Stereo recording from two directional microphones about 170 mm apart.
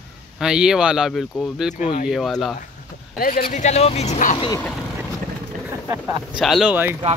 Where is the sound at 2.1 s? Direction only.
Centre (ahead or behind).